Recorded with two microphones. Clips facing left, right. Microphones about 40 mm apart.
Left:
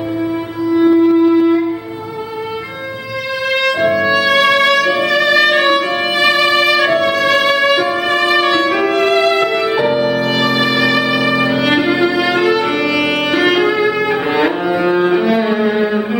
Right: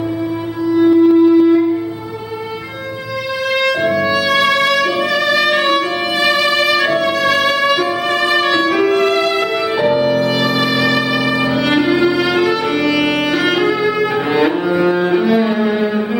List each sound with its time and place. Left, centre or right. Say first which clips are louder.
0.7 s music: even; centre
3.5 s music: left 1 dB; centre